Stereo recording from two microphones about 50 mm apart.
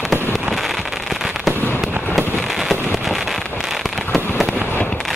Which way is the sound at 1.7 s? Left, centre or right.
Centre.